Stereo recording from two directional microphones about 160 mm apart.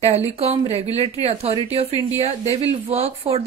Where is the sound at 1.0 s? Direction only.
40° right (ahead or behind).